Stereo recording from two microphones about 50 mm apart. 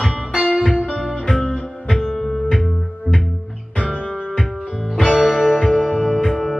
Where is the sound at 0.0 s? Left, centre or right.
Centre.